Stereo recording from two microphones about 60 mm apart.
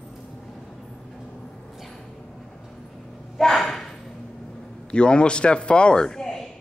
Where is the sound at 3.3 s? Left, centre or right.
Centre.